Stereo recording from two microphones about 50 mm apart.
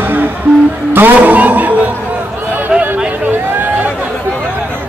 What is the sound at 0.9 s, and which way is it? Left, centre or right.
Music, right.